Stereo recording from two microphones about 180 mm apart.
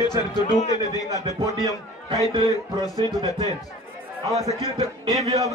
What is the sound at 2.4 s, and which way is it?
Speech, 20° left (ahead or behind).